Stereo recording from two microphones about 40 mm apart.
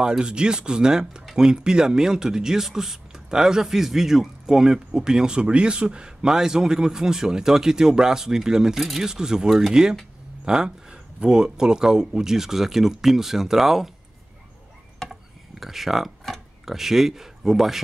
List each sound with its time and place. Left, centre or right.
0.0 s speech: right
8.7 s speech: centre
9.0 s speech: centre
15.6 s speech: centre